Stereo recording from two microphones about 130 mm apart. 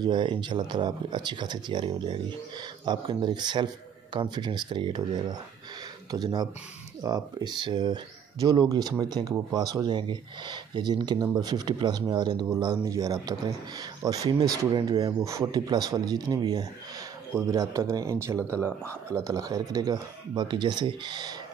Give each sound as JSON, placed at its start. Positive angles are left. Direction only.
{"t": 0.0, "sound": "speech", "side_deg": -35}